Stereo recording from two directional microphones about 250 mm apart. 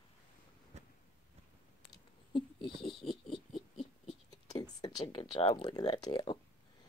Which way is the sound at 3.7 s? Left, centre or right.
Centre.